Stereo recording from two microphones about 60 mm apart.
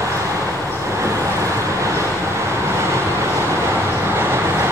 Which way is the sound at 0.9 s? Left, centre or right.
Right.